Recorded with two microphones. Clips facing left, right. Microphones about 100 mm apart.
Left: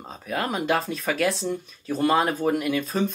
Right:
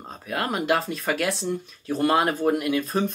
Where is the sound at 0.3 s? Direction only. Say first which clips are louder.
Right 1 dB; centre (ahead or behind).